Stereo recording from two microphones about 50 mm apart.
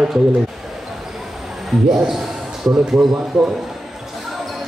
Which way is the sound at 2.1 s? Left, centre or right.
Centre.